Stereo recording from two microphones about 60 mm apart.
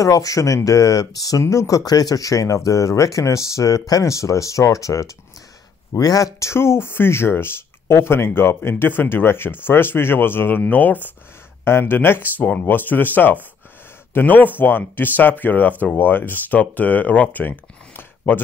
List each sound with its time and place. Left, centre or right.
0.0 s speech: left
1.4 s speech: left
5.9 s speech: left